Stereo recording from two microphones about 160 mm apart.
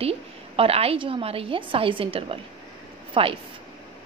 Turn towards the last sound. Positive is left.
turn(degrees=-35)  # may be behind; listen again after turning